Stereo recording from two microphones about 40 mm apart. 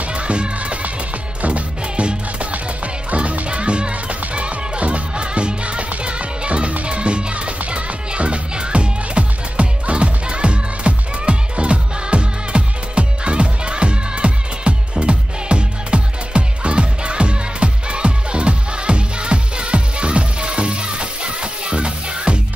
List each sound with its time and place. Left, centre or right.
0.0 s music: right